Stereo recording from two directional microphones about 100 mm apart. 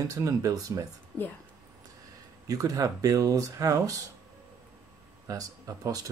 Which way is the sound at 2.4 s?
35° right (ahead or behind).